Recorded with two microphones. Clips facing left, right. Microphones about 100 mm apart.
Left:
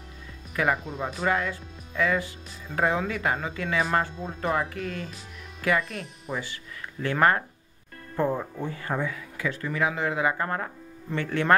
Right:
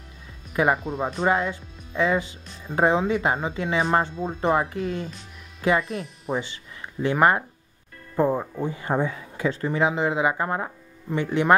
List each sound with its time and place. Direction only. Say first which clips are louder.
0.7 s speech: right 5 dB; centre (ahead or behind)
1.2 s speech: right 3 dB; 25° right (ahead or behind)